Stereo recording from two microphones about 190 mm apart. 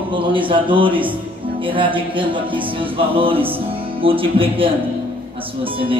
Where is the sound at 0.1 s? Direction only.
25° right (ahead or behind).